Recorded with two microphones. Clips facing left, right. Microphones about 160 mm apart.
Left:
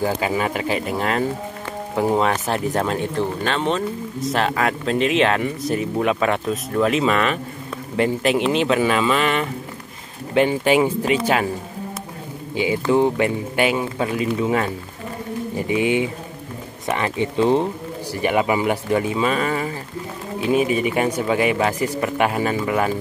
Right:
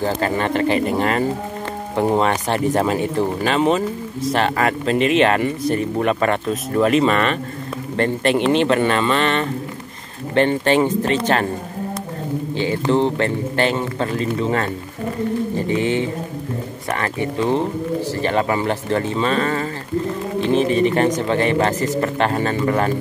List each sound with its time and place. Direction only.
0.0 s speech: 5° left (ahead or behind)
12.5 s speech: 10° left (ahead or behind)